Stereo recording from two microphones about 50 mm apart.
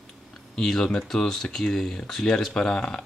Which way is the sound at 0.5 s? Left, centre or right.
Centre.